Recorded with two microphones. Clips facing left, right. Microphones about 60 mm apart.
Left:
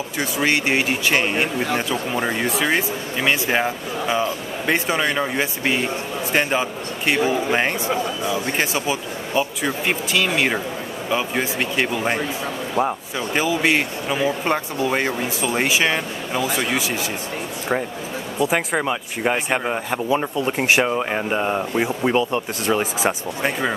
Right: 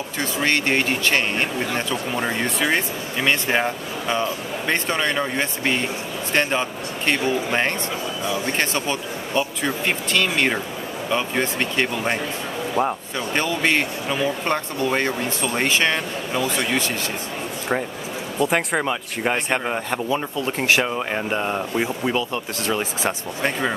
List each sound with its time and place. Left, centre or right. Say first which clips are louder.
0.2 s speech: left 1 dB; centre
18.4 s speech: even; centre
20.1 s speech: left 3 dB; centre